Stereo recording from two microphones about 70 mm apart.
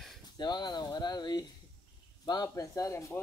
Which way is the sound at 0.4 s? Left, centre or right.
Left.